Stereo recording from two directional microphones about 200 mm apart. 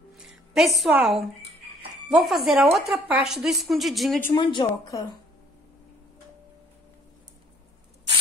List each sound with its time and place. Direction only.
0.1 s music: centre (ahead or behind)
2.0 s a woman's voice: centre (ahead or behind)
4.4 s a woman's voice: 20° left (ahead or behind)